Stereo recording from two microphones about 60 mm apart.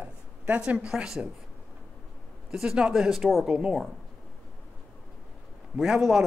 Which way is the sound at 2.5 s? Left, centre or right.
Centre.